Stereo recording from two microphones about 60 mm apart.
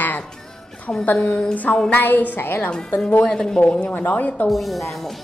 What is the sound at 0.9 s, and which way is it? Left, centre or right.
A woman's voice, left.